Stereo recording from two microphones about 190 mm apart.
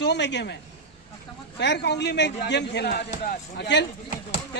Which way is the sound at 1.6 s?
65° left (ahead or behind).